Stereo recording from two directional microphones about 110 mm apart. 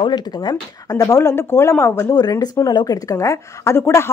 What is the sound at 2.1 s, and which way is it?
A woman's voice, 35° left (ahead or behind).